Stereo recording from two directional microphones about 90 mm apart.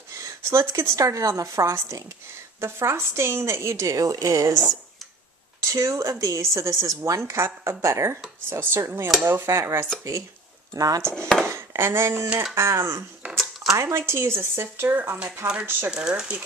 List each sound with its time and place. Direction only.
0.1 s a woman's voice: 35° right (ahead or behind)
5.6 s a woman's voice: 35° right (ahead or behind)
11.1 s speech: 5° left (ahead or behind)
11.4 s speech: 30° right (ahead or behind)